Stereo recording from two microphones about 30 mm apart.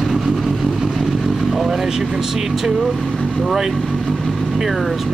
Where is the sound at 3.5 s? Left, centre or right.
Centre.